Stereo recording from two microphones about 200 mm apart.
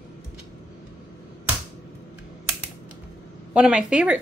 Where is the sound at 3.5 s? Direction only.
5° right (ahead or behind).